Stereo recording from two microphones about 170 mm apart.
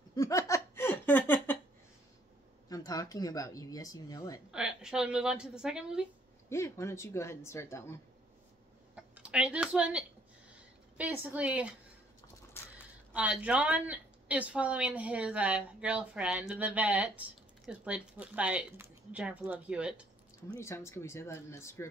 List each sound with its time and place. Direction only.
0.1 s laughter: 20° left (ahead or behind)
2.7 s speech: 20° left (ahead or behind)
4.5 s a woman's voice: 5° right (ahead or behind)
6.5 s a woman's voice: 15° left (ahead or behind)
8.9 s speech: 5° right (ahead or behind)
12.7 s speech: 10° right (ahead or behind)
20.6 s a woman's voice: 15° left (ahead or behind)